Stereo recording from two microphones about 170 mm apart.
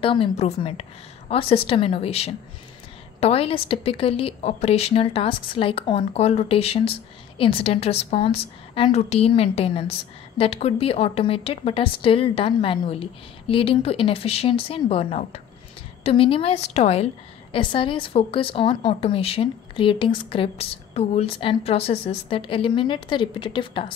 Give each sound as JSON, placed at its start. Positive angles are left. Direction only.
{"t": 0.0, "sound": "a woman's voice", "side_deg": 30}